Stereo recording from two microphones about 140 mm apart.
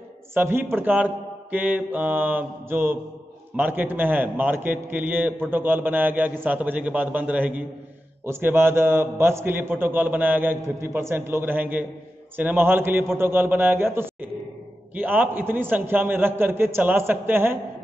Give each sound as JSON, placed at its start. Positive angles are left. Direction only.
{"t": 0.3, "sound": "a man's voice", "side_deg": -15}